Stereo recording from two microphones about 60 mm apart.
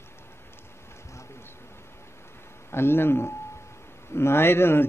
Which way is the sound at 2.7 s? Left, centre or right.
Left.